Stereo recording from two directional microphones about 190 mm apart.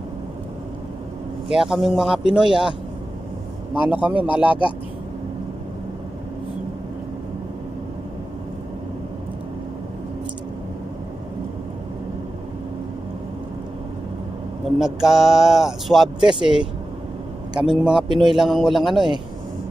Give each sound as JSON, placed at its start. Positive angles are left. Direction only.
{"t": 1.5, "sound": "speech", "side_deg": -5}
{"t": 3.8, "sound": "speech", "side_deg": -10}
{"t": 14.8, "sound": "speech", "side_deg": 0}
{"t": 17.6, "sound": "speech", "side_deg": -5}
{"t": 18.0, "sound": "a man's voice", "side_deg": -25}
{"t": 18.3, "sound": "speech", "side_deg": 0}